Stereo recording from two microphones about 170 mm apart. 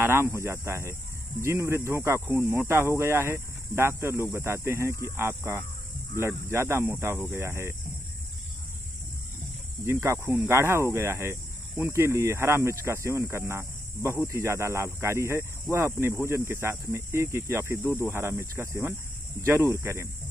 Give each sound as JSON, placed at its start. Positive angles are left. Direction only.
{"t": 0.0, "sound": "speech", "side_deg": -15}
{"t": 9.8, "sound": "speech", "side_deg": -15}